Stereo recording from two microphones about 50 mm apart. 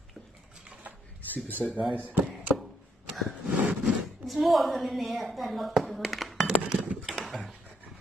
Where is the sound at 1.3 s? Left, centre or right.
Left.